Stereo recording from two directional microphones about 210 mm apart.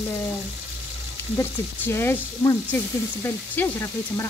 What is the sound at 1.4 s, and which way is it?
A woman's voice, 10° left (ahead or behind).